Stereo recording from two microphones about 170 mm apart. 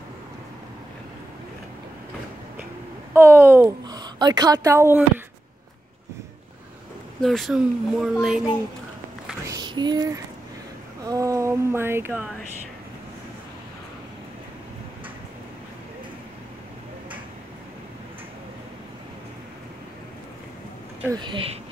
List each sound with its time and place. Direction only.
3.1 s a woman's voice: 15° right (ahead or behind)
7.2 s speech: centre (ahead or behind)
9.5 s a sound: 25° right (ahead or behind)
11.1 s speech: 20° right (ahead or behind)
21.2 s speech: 30° right (ahead or behind)